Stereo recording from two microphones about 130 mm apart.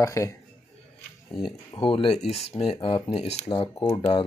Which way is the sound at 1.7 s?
40° left (ahead or behind).